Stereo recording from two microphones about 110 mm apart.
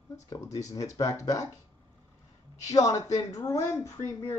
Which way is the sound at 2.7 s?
30° left (ahead or behind).